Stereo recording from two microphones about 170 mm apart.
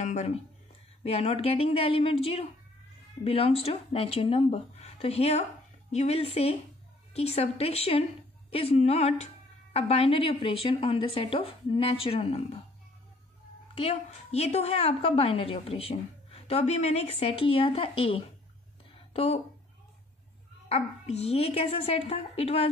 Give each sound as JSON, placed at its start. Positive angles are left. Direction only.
{"t": 0.0, "sound": "a sound", "side_deg": 45}
{"t": 1.0, "sound": "a woman's voice", "side_deg": 35}
{"t": 13.7, "sound": "a woman's voice", "side_deg": 35}
{"t": 20.6, "sound": "a woman's voice", "side_deg": 40}